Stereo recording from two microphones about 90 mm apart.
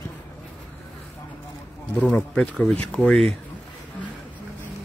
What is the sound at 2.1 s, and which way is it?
Speech, 20° left (ahead or behind).